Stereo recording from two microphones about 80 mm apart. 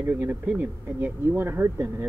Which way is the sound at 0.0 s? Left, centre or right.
Right.